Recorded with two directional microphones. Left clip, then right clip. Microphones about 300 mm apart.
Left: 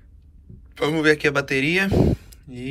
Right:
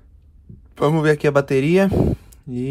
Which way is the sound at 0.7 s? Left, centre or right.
Right.